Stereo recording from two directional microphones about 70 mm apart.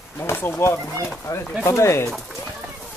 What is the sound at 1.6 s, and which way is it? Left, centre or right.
Speech, left.